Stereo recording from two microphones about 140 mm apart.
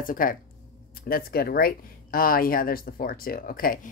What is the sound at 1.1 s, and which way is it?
Speech, 90° left.